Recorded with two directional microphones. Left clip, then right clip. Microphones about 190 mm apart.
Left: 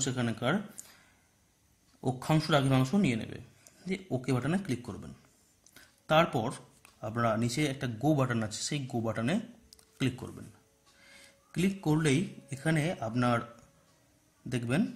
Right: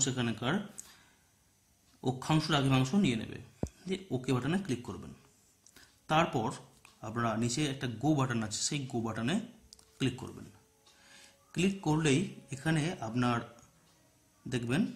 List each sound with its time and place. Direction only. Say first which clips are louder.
0.0 s speech: left 2 dB; 45° left (ahead or behind)
2.0 s speech: left 2 dB; 45° left (ahead or behind)
14.5 s speech: left 1 dB; 50° left (ahead or behind)